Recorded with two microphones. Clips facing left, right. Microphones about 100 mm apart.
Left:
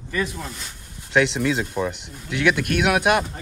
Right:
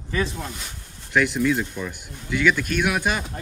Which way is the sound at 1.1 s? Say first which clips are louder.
Left 1 dB; 65° left (ahead or behind).